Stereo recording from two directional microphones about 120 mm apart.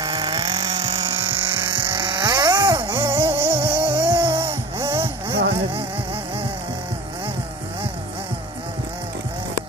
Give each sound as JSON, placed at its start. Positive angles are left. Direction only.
{"t": 0.0, "sound": "vehicle", "side_deg": -30}
{"t": 2.0, "sound": "vehicle", "side_deg": -40}
{"t": 3.1, "sound": "music", "side_deg": -20}
{"t": 3.8, "sound": "music", "side_deg": -45}
{"t": 4.7, "sound": "vehicle", "side_deg": -20}
{"t": 5.0, "sound": "vehicle", "side_deg": -50}